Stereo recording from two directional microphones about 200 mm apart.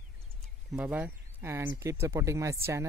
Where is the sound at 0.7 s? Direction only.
5° right (ahead or behind).